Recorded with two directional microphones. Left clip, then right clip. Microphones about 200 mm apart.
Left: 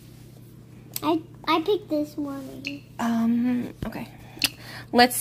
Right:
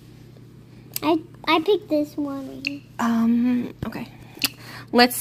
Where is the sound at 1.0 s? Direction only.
30° right (ahead or behind).